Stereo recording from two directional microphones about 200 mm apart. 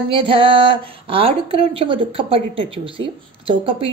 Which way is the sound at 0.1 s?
25° right (ahead or behind).